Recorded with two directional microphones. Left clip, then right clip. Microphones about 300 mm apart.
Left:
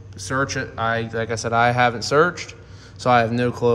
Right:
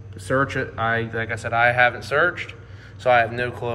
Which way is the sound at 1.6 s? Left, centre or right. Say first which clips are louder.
Even; centre.